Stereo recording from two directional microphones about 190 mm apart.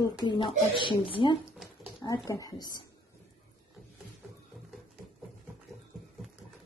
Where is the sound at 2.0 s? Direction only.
20° left (ahead or behind).